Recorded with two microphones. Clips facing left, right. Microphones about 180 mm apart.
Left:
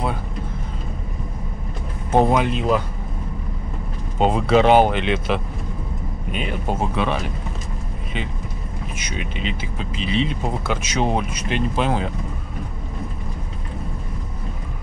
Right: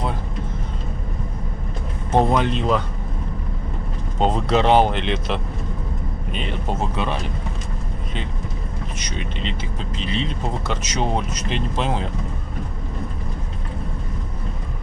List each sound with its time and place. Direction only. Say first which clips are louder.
2.0 s speech: left 1 dB; 5° left (ahead or behind)
4.2 s speech: left 3 dB; 5° left (ahead or behind)
8.9 s speech: left 2 dB; 5° left (ahead or behind)